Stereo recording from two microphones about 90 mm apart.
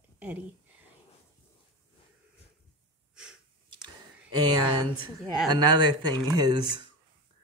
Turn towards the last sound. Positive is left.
turn(degrees=-55)  # may be behind; listen again after turning